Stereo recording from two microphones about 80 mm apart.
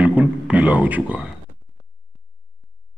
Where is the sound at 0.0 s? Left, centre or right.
Centre.